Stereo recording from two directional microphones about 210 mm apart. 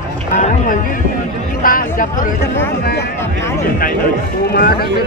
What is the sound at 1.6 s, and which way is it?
Music, 40° left (ahead or behind).